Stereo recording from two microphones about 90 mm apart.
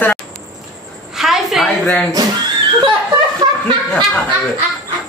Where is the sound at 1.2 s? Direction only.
Centre (ahead or behind).